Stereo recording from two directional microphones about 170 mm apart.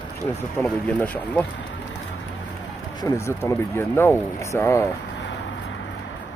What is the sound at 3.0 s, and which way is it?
Speech, 15° left (ahead or behind).